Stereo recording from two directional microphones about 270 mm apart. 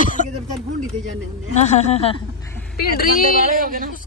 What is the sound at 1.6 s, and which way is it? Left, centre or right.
Speech, left.